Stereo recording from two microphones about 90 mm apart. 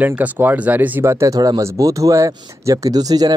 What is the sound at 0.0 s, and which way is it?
Speech, 20° right (ahead or behind).